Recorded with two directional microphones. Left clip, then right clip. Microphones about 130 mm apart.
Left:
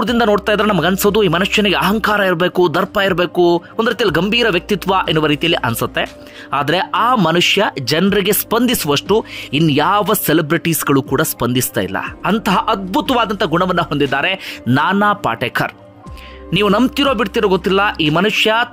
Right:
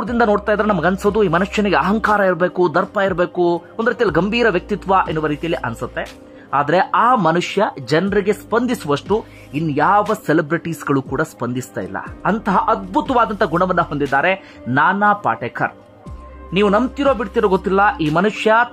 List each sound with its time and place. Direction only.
0.0 s speech: 20° left (ahead or behind)
2.9 s speech: 10° left (ahead or behind); by 7.2 s 35° left (ahead or behind)
7.2 s speech: 15° left (ahead or behind)
8.1 s speech: 35° left (ahead or behind)
8.6 s speech: 20° left (ahead or behind)
9.7 s speech: 45° left (ahead or behind)
10.0 s speech: 20° left (ahead or behind)
14.1 s speech: 25° left (ahead or behind); by 17.2 s 45° left (ahead or behind)
17.3 s speech: 15° left (ahead or behind)